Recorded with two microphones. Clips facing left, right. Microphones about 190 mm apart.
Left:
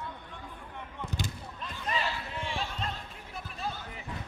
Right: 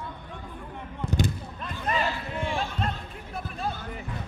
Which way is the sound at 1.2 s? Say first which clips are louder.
Right 9 dB; 55° right (ahead or behind).